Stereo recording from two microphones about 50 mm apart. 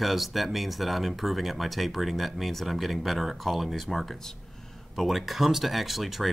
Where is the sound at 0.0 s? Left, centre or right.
Centre.